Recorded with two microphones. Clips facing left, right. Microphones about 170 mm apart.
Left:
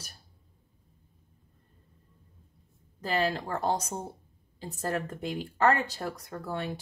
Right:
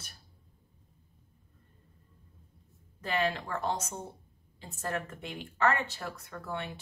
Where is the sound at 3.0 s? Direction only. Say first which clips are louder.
Left 2 dB; 35° left (ahead or behind).